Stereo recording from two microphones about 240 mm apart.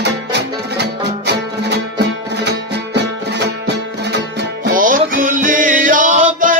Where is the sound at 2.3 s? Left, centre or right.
Right.